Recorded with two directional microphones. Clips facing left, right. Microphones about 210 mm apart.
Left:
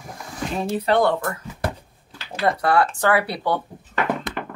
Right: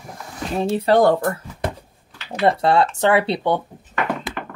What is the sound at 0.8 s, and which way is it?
Speech, 40° right (ahead or behind).